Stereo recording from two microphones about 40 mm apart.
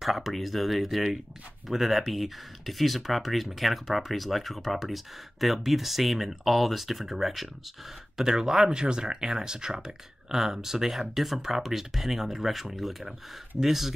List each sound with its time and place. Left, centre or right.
0.0 s speech: centre